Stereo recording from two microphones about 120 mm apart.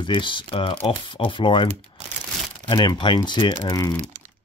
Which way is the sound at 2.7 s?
40° left (ahead or behind).